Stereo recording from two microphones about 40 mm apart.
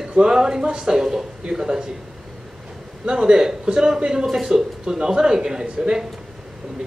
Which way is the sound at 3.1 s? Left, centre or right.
Centre.